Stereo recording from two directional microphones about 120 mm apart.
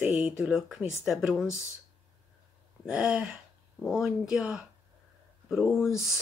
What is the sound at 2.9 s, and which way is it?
A woman's voice, 5° right (ahead or behind).